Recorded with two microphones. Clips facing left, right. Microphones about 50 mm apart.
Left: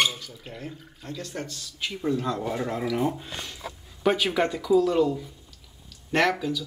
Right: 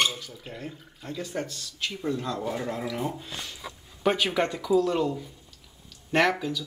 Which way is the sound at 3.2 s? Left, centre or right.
Centre.